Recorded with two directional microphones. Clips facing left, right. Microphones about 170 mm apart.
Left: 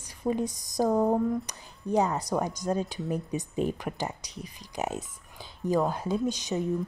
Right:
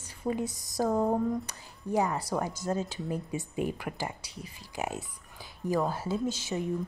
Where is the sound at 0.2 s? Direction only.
20° left (ahead or behind).